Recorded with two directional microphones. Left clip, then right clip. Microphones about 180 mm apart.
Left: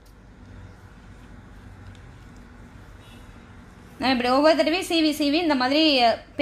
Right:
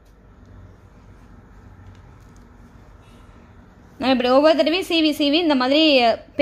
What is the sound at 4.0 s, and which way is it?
A woman's voice, 55° right (ahead or behind).